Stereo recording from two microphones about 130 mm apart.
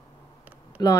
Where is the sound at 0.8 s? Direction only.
30° left (ahead or behind).